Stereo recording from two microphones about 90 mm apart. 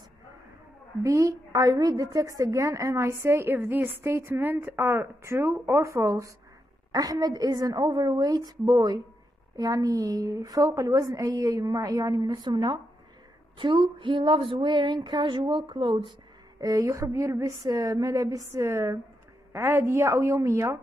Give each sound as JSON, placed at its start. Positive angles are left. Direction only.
{"t": 1.0, "sound": "a woman's voice", "side_deg": -35}
{"t": 13.6, "sound": "a sound", "side_deg": -65}
{"t": 16.5, "sound": "a woman's voice", "side_deg": -40}